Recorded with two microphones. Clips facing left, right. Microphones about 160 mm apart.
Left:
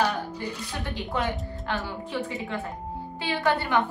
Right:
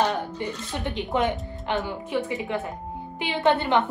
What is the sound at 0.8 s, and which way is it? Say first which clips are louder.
A woman's voice: right 5 dB; 20° right (ahead or behind).